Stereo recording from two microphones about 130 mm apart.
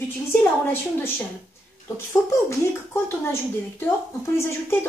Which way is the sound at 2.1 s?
20° left (ahead or behind).